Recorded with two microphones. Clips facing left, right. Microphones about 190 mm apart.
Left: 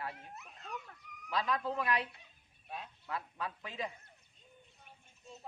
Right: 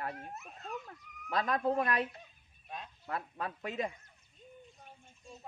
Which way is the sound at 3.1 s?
50° right (ahead or behind).